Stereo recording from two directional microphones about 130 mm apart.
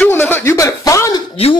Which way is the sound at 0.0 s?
15° left (ahead or behind).